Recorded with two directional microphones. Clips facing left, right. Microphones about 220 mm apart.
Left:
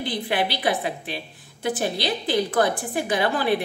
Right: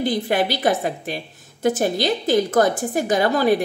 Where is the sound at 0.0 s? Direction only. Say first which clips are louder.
Right 5 dB; 45° right (ahead or behind).